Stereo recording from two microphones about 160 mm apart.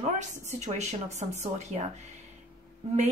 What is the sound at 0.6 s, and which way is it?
Speech, 45° right (ahead or behind).